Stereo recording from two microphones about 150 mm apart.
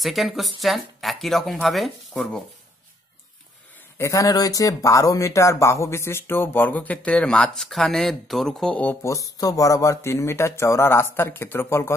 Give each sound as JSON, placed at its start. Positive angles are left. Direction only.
{"t": 0.0, "sound": "speech", "side_deg": 0}
{"t": 4.0, "sound": "speech", "side_deg": 20}